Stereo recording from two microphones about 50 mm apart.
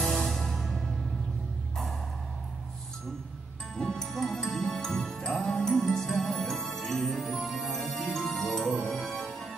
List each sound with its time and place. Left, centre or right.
0.0 s music: centre
3.7 s music: centre
5.2 s music: centre
5.6 s music: centre